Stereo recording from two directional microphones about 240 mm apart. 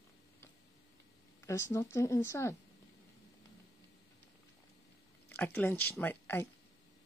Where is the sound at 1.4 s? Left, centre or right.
Centre.